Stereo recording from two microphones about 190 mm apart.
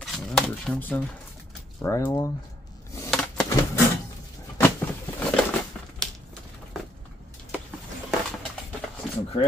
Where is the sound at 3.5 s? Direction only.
15° left (ahead or behind).